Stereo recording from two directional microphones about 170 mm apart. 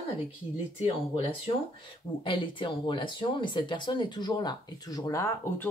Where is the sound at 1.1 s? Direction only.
30° left (ahead or behind).